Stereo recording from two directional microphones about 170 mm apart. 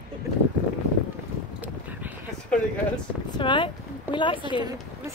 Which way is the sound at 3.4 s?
30° left (ahead or behind).